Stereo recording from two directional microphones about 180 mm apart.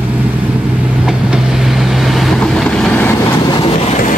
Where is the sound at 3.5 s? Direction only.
30° left (ahead or behind).